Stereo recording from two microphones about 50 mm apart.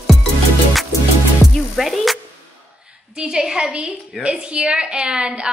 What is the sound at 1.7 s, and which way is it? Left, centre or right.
Music, centre.